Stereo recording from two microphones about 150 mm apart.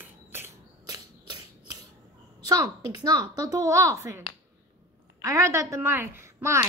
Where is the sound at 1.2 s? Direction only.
25° right (ahead or behind).